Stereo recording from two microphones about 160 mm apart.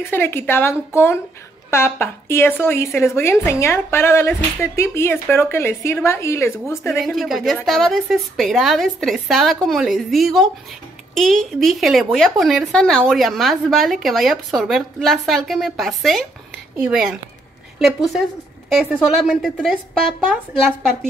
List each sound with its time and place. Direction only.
0.0 s speech: 15° left (ahead or behind)
7.1 s a woman's voice: centre (ahead or behind)